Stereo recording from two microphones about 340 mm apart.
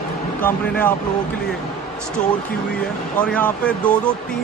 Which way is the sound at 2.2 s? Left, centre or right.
Left.